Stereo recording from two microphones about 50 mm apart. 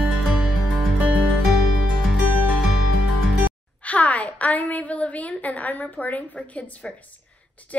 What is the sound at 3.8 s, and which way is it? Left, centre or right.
A woman's voice, left.